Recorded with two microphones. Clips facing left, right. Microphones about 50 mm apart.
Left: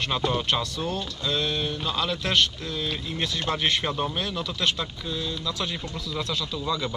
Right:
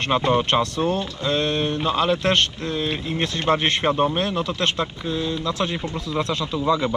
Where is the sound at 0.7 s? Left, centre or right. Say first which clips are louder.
Right 7 dB; right.